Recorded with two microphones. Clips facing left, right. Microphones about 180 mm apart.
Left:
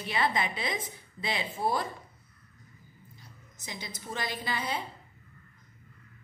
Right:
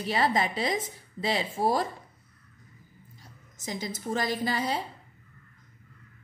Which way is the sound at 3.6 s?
45° right (ahead or behind).